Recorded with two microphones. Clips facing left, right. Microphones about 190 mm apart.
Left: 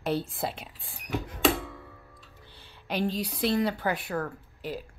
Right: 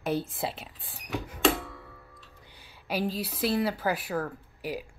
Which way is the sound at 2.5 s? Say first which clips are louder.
Right 1 dB; 10° right (ahead or behind).